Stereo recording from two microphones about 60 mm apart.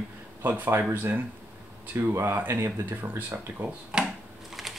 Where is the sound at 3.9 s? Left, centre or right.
Centre.